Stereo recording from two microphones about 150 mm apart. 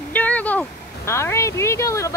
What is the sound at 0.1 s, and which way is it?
Speech, 10° left (ahead or behind).